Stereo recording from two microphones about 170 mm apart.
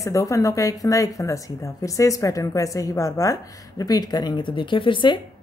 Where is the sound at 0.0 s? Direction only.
20° left (ahead or behind).